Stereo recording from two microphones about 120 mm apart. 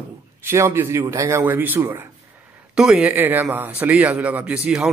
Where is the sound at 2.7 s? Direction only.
5° right (ahead or behind).